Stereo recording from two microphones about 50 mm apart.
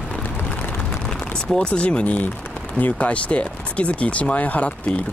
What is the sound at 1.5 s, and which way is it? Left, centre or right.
Speech, centre.